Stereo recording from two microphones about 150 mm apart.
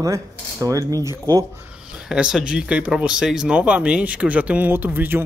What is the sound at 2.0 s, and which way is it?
A man's voice, 5° right (ahead or behind).